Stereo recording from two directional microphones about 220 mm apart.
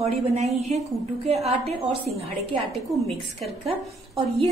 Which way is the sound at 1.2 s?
30° right (ahead or behind).